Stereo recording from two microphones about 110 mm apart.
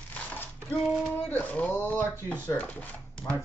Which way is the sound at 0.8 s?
5° right (ahead or behind).